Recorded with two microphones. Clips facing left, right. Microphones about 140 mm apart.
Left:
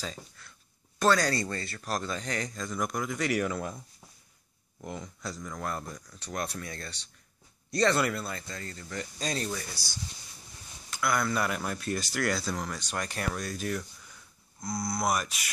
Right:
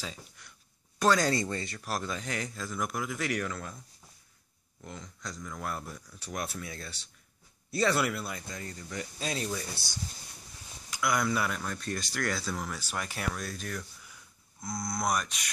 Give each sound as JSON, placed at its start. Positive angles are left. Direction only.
{"t": 0.0, "sound": "speech", "side_deg": -10}
{"t": 3.3, "sound": "speech", "side_deg": 15}
{"t": 4.8, "sound": "speech", "side_deg": 10}
{"t": 10.9, "sound": "speech", "side_deg": -15}
{"t": 11.3, "sound": "speech", "side_deg": 0}